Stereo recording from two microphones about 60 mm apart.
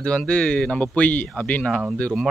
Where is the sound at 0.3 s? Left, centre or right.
Centre.